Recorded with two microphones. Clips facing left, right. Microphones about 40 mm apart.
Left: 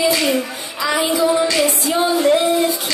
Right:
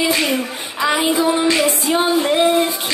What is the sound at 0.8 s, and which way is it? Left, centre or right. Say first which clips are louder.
Music: right 1 dB; right.